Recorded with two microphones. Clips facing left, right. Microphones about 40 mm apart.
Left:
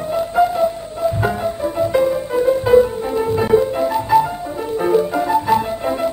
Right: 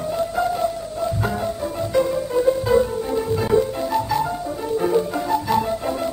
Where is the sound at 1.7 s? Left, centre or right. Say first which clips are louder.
Left 4 dB; left.